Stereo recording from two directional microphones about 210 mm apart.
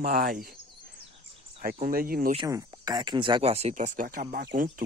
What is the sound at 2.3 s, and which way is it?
Speech, 15° right (ahead or behind).